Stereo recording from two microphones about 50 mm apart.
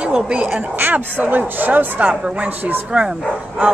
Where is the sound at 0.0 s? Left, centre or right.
Right.